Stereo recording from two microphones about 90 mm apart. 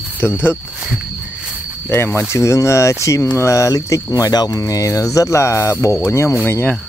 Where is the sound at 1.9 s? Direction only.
30° left (ahead or behind).